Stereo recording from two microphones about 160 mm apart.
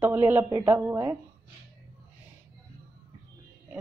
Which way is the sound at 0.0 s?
10° right (ahead or behind).